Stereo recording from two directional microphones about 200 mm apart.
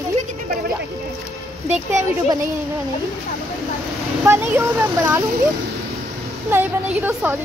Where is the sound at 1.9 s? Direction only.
15° right (ahead or behind).